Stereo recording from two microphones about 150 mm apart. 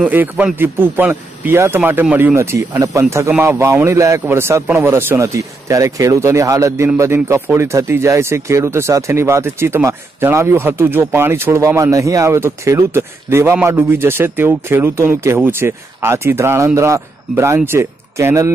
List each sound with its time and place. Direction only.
0.0 s a man's voice: 10° right (ahead or behind)